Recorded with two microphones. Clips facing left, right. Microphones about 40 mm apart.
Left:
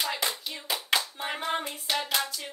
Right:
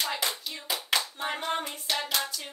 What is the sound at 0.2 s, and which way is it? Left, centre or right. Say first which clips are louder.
Hands: left 1 dB; centre.